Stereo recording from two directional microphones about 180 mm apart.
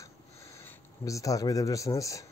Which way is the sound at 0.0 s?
15° left (ahead or behind).